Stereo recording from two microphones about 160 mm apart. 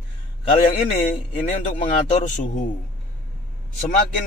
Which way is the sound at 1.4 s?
50° left (ahead or behind).